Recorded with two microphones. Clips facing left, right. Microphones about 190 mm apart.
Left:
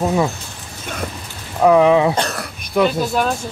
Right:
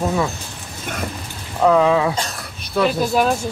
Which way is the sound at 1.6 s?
15° left (ahead or behind).